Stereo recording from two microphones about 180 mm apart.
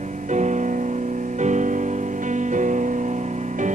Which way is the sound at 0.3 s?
40° right (ahead or behind).